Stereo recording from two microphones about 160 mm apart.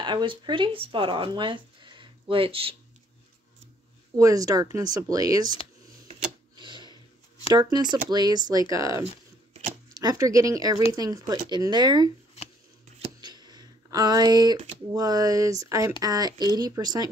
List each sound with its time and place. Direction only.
0.0 s speech: 30° right (ahead or behind)
4.2 s speech: 20° right (ahead or behind)
6.5 s tick-tock: 30° right (ahead or behind)
6.9 s a sound: 25° left (ahead or behind)
7.5 s speech: 25° right (ahead or behind)
13.0 s a sound: 25° right (ahead or behind)
15.0 s speech: 25° right (ahead or behind)